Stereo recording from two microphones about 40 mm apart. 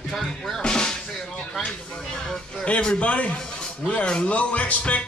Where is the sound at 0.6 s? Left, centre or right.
Centre.